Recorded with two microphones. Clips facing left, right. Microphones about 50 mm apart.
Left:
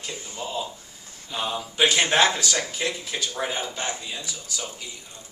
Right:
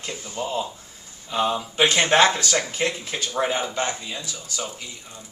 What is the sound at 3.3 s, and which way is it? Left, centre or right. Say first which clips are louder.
Speech: right 8 dB; right.